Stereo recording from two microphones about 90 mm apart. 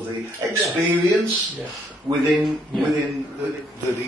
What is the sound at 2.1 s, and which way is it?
Speech, 55° right (ahead or behind).